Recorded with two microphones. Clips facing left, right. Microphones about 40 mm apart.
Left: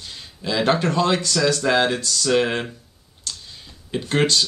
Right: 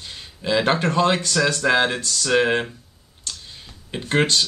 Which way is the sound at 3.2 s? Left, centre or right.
Centre.